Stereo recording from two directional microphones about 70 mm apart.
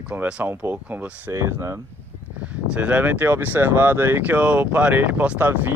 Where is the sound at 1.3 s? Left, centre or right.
Right.